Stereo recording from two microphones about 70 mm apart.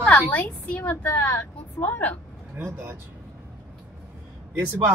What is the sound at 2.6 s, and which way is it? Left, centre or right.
Speech, right.